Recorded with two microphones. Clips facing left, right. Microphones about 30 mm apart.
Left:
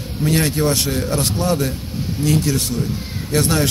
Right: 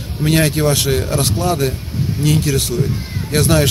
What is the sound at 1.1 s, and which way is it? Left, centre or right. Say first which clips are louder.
A man's voice: right 1 dB; right.